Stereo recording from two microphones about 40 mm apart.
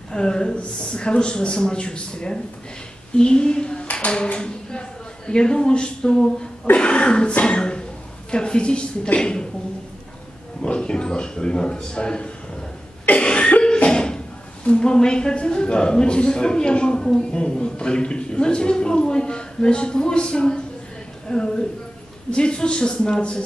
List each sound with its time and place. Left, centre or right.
0.1 s a woman's voice: centre
7.4 s a sound: left
8.3 s a woman's voice: left
10.6 s a woman's voice: left
13.2 s cough: left
13.5 s a sound: left
14.9 s a woman's voice: left